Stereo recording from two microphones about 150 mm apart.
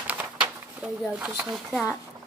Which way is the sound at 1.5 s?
Centre (ahead or behind).